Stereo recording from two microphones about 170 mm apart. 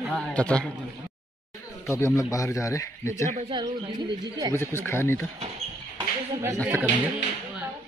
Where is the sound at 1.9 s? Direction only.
15° left (ahead or behind).